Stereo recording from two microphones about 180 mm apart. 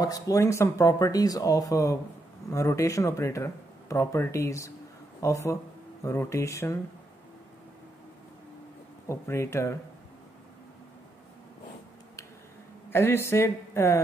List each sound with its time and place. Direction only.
0.0 s speech: 20° left (ahead or behind)
9.1 s speech: 15° left (ahead or behind)
12.9 s speech: 15° left (ahead or behind)